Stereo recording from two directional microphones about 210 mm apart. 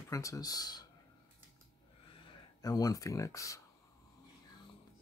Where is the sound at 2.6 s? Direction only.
15° left (ahead or behind).